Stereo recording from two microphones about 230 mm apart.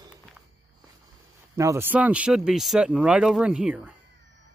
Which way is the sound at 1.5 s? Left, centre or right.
Centre.